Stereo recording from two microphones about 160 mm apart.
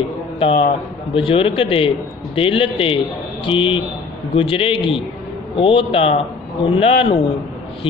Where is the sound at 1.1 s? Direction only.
35° left (ahead or behind).